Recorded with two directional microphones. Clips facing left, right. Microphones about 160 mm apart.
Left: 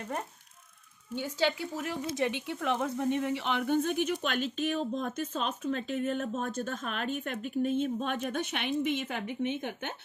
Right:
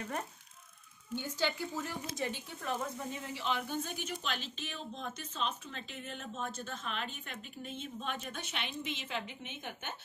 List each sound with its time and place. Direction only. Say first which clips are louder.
1.1 s speech: left 5 dB; 75° left (ahead or behind); by 9.9 s 55° left (ahead or behind)